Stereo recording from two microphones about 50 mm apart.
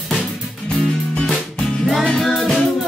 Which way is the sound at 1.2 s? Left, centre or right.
Centre.